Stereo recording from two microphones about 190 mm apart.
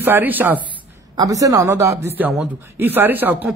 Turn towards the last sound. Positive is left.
turn(degrees=-10)  # may be behind; listen again after turning